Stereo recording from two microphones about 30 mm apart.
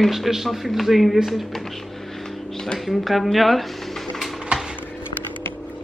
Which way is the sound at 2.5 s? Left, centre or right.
Left.